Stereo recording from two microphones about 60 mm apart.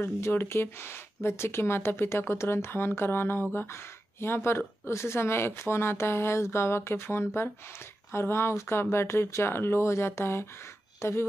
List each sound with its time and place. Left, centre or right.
0.0 s speech: left